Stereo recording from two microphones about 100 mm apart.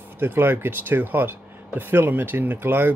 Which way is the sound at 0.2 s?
20° right (ahead or behind).